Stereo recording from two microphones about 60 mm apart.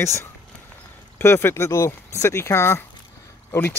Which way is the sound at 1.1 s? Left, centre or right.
Left.